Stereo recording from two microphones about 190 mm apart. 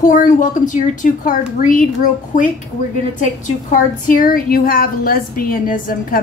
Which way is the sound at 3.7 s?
45° left (ahead or behind).